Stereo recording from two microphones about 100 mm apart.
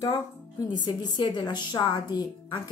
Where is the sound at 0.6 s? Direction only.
45° left (ahead or behind).